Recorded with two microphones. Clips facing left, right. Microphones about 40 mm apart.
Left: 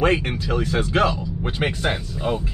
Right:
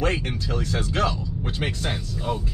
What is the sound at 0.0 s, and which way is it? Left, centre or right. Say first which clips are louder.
Speech: left 5 dB; left.